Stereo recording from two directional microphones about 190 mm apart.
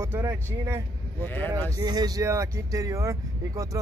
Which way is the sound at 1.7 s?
20° right (ahead or behind).